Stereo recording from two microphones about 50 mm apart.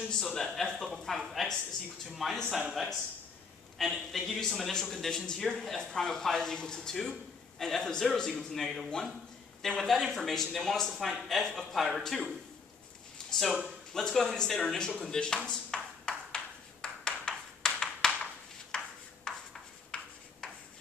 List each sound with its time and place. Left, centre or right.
0.2 s a man's voice: centre
5.5 s a man's voice: centre
8.6 s speech: centre
16.8 s a sound: centre
19.9 s writing: left